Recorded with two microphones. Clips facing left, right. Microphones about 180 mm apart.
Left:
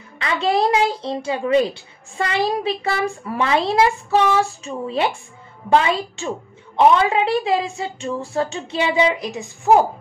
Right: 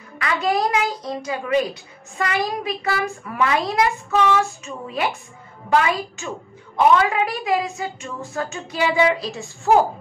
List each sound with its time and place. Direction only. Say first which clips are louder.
0.2 s a child's voice: left 2 dB; 30° left (ahead or behind)